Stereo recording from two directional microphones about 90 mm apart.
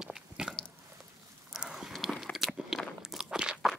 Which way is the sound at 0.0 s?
5° right (ahead or behind).